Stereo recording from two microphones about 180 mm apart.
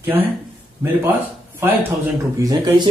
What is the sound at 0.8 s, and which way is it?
Speech, 10° right (ahead or behind).